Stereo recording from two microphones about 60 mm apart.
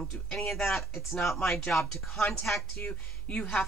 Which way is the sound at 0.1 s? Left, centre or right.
Centre.